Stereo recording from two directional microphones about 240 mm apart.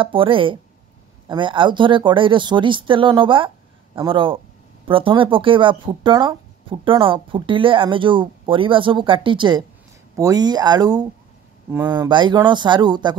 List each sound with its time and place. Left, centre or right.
0.0 s speech: right